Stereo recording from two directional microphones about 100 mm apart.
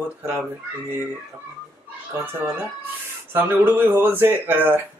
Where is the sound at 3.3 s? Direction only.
20° right (ahead or behind).